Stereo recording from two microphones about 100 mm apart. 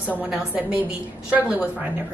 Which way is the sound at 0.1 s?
10° right (ahead or behind).